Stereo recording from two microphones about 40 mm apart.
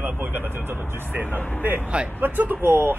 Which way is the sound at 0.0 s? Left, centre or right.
Right.